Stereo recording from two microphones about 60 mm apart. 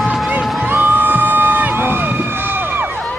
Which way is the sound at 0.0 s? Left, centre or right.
Centre.